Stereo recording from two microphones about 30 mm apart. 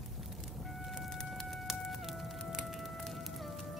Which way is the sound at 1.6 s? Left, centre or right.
Centre.